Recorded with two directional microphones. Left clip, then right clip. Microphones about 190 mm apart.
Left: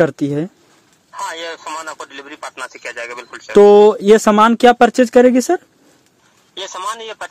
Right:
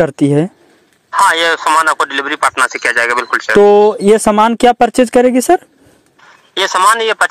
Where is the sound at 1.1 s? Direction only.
60° right (ahead or behind).